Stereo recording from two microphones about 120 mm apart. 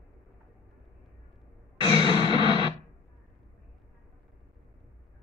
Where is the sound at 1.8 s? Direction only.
35° left (ahead or behind).